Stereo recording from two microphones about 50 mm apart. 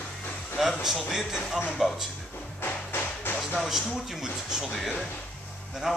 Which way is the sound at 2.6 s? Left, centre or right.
Left.